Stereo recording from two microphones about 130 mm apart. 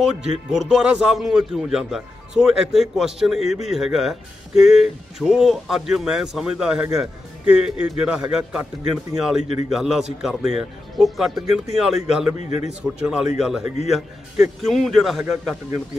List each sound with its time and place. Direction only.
0.0 s a man's voice: 5° right (ahead or behind)
12.4 s a man's voice: 60° left (ahead or behind)
12.8 s a man's voice: 5° right (ahead or behind)